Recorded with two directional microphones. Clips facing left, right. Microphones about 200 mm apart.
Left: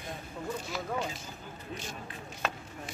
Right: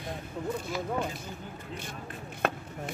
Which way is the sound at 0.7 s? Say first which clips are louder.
Right 2 dB; 55° right (ahead or behind).